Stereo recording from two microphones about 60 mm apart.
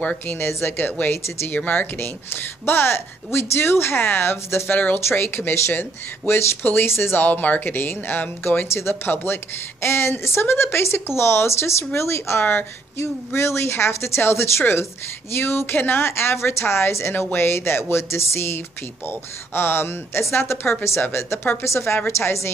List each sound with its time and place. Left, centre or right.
0.0 s speech: left
0.4 s speech: left
4.6 s speech: left
5.2 s speech: left
8.6 s a woman's voice: left